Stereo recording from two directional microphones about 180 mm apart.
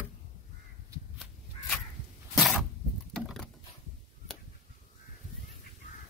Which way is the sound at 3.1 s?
5° left (ahead or behind).